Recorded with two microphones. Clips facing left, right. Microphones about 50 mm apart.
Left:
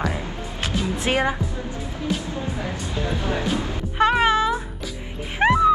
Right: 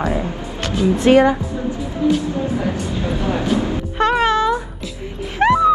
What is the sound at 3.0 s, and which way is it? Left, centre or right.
Speech, right.